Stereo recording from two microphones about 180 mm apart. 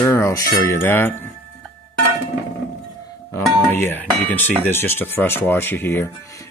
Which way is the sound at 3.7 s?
10° left (ahead or behind).